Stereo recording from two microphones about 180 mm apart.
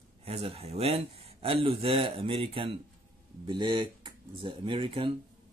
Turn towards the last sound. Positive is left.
turn(degrees=-30)  # may be behind; listen again after turning